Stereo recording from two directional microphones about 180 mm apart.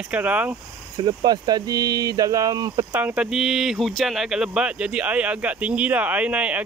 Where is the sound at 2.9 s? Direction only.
10° right (ahead or behind).